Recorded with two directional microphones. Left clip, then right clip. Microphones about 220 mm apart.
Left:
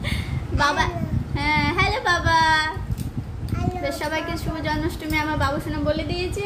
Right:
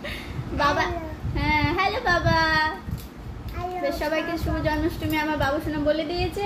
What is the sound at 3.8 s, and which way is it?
A woman's voice, 25° left (ahead or behind).